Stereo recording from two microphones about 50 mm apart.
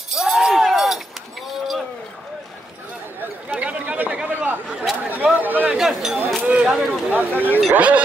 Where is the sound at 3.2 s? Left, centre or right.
Right.